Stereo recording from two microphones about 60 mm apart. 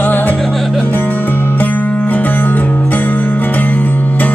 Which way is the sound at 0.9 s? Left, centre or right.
Left.